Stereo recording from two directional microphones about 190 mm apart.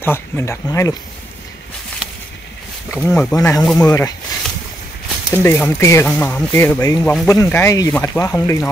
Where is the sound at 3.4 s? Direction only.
20° left (ahead or behind).